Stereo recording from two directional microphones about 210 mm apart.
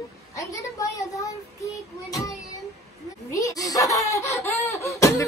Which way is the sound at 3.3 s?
15° left (ahead or behind).